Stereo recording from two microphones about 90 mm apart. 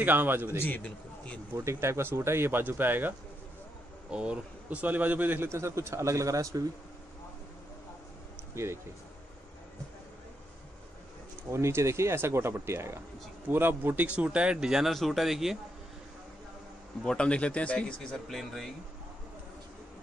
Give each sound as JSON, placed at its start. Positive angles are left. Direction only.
{"t": 0.0, "sound": "a man's voice", "side_deg": -25}
{"t": 0.6, "sound": "a man's voice", "side_deg": 20}
{"t": 1.5, "sound": "a man's voice", "side_deg": -30}
{"t": 4.1, "sound": "a man's voice", "side_deg": -10}
{"t": 8.6, "sound": "a man's voice", "side_deg": -30}
{"t": 11.5, "sound": "a man's voice", "side_deg": -30}
{"t": 17.0, "sound": "a man's voice", "side_deg": 10}